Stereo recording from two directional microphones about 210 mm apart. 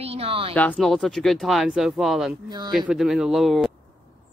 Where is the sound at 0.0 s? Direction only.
30° right (ahead or behind).